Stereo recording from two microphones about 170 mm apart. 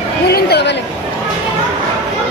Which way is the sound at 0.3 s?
75° left (ahead or behind).